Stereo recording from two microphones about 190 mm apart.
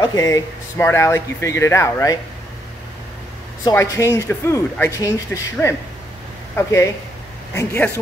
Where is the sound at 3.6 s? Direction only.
15° left (ahead or behind).